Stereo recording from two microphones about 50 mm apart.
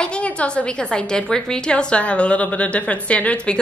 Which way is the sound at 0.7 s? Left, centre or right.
Centre.